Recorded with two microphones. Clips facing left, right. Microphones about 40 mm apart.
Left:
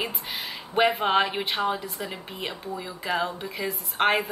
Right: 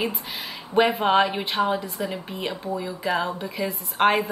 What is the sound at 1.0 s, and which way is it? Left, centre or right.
A woman's voice, centre.